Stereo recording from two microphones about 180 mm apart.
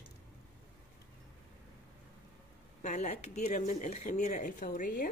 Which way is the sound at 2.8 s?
40° left (ahead or behind).